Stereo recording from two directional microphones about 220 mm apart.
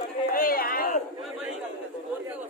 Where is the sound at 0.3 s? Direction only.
40° left (ahead or behind).